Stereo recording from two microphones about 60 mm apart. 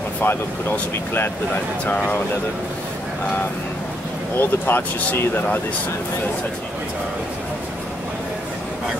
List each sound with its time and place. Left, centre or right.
0.2 s speech: left
4.4 s speech: left